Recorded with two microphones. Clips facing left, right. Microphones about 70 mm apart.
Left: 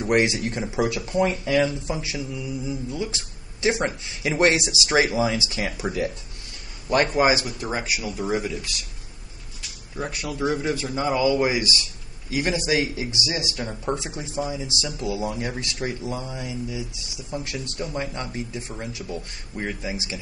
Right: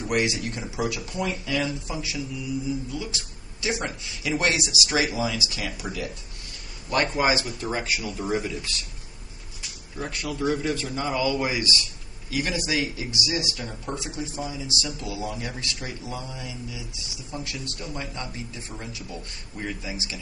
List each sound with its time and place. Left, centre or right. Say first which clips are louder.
0.0 s speech: left 4 dB; left
7.1 s a man's voice: left 3 dB; centre
9.9 s a man's voice: left 2 dB; centre